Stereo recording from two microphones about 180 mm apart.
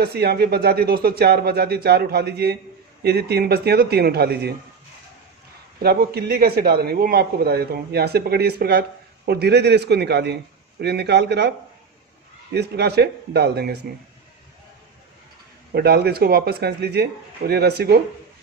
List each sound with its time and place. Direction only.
0.0 s a man's voice: 60° right (ahead or behind)
5.8 s a man's voice: 60° right (ahead or behind)
12.5 s a man's voice: 65° right (ahead or behind)
15.7 s a man's voice: 60° right (ahead or behind)